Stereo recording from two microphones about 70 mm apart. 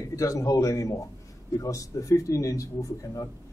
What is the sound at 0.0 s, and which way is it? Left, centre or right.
Speech, left.